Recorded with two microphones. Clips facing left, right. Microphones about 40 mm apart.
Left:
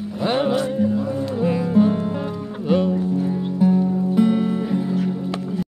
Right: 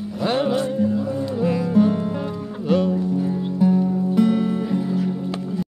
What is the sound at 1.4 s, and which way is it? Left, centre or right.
Music, centre.